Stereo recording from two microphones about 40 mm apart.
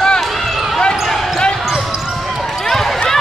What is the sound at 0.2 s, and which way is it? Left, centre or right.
Basketball bounce, centre.